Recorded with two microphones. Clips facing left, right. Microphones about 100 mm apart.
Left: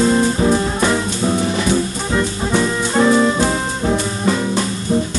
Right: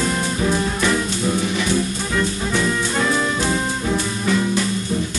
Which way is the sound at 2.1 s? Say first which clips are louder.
Left 4 dB; 25° left (ahead or behind).